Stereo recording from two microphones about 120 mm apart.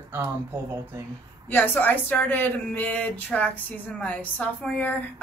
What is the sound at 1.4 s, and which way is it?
A woman's voice, 15° left (ahead or behind).